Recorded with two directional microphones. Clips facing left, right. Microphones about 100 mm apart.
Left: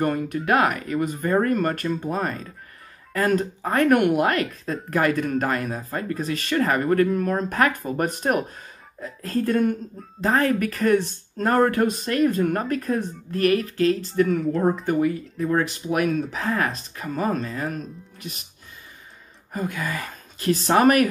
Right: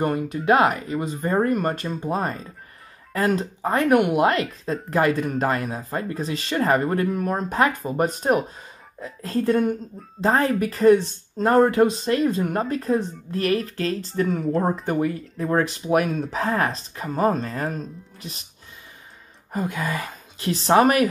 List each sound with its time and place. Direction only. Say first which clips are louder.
0.0 s speech: right 1 dB; 25° right (ahead or behind)
19.6 s speech: right 1 dB; 25° right (ahead or behind)